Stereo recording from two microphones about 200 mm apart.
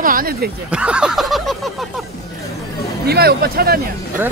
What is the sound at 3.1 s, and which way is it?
Speech, 50° right (ahead or behind).